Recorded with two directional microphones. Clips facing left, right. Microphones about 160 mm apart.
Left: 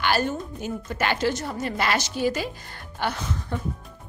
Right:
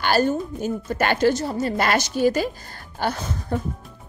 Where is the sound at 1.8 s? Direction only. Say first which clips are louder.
Right 4 dB; 45° right (ahead or behind).